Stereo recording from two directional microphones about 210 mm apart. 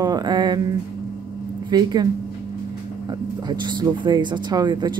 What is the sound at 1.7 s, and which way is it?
Speech, 20° right (ahead or behind).